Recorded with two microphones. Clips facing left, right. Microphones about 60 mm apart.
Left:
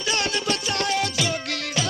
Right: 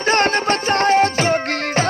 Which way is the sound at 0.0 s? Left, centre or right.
Right.